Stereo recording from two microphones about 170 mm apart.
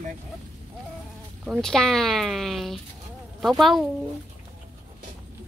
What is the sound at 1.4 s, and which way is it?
Speech, 5° left (ahead or behind).